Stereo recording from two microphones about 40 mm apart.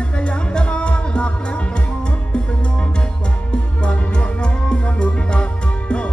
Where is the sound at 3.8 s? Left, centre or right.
Left.